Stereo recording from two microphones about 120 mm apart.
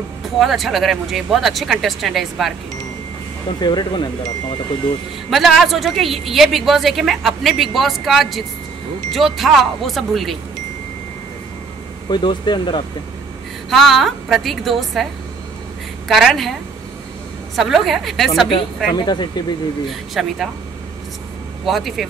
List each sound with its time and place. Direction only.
0.4 s a woman's voice: centre (ahead or behind)
3.5 s speech: 35° left (ahead or behind)
5.3 s a woman's voice: centre (ahead or behind)
12.1 s speech: 40° left (ahead or behind)
13.7 s a woman's voice: centre (ahead or behind)
16.1 s a woman's voice: centre (ahead or behind)
17.6 s a woman's voice: centre (ahead or behind)
18.9 s speech: 35° left (ahead or behind)
19.9 s a woman's voice: centre (ahead or behind)
21.6 s a woman's voice: centre (ahead or behind)